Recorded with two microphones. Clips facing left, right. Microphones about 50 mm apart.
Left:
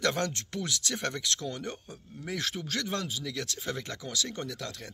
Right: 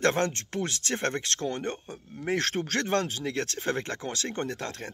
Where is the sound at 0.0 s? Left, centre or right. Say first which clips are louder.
Right 4 dB; right.